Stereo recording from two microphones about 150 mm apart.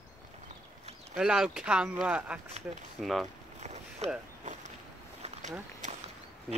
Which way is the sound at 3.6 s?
45° right (ahead or behind).